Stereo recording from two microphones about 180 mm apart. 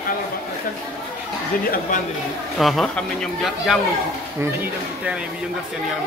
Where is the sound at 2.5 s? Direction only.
Centre (ahead or behind).